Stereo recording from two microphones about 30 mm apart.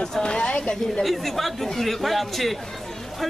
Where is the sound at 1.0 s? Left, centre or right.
Centre.